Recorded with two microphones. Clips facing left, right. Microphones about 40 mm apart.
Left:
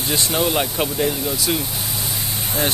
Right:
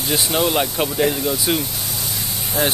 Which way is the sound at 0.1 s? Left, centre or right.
Centre.